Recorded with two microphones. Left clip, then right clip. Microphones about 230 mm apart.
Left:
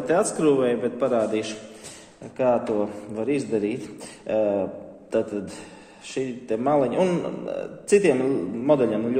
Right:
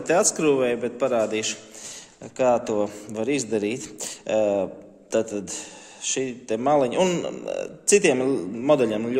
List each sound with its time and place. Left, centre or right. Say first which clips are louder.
0.0 s a man's voice: even; right